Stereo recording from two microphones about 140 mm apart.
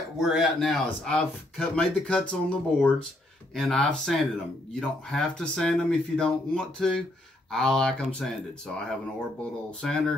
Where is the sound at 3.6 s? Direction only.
5° left (ahead or behind).